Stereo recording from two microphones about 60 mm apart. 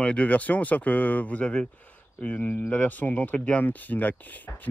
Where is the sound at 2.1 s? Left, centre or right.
Left.